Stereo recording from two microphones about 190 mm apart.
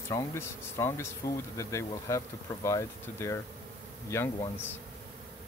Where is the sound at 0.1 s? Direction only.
15° left (ahead or behind).